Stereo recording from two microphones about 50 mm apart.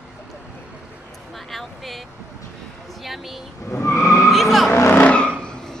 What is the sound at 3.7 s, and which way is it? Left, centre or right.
Skidding, left.